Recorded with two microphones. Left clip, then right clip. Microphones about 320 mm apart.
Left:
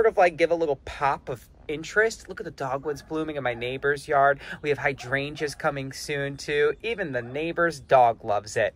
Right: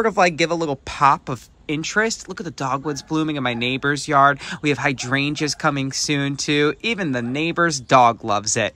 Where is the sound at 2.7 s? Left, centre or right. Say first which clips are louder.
Right 4 dB; right.